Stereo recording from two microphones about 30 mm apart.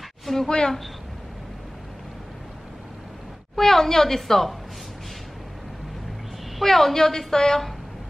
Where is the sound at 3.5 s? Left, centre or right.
Centre.